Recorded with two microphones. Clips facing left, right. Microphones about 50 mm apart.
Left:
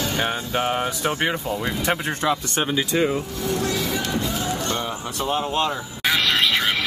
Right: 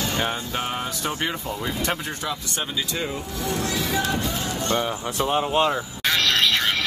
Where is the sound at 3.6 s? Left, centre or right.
Right.